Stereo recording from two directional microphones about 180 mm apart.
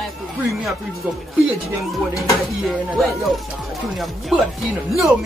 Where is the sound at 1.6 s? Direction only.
15° left (ahead or behind).